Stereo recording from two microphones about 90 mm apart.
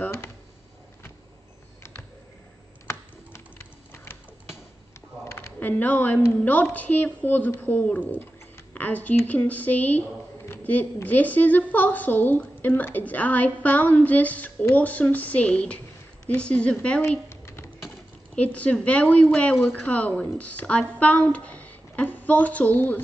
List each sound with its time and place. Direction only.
0.0 s a sound: 30° left (ahead or behind)
2.9 s typing: 30° left (ahead or behind)
5.2 s a sound: 25° left (ahead or behind)
6.2 s a woman's voice: 20° left (ahead or behind)
17.3 s typing: 30° left (ahead or behind)
18.3 s a woman's voice: 15° left (ahead or behind)